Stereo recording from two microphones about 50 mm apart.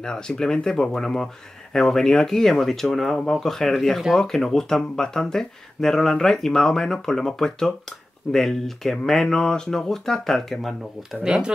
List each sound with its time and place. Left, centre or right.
0.0 s speech: centre
11.3 s speech: centre